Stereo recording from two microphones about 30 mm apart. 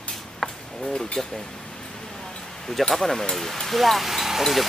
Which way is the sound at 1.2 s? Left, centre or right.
Centre.